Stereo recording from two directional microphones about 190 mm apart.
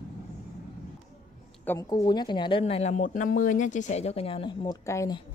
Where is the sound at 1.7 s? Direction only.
20° left (ahead or behind).